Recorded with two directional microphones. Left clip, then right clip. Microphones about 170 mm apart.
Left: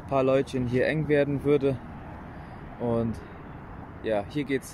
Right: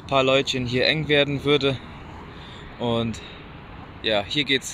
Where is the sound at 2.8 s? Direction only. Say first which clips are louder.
Right 3 dB; centre (ahead or behind).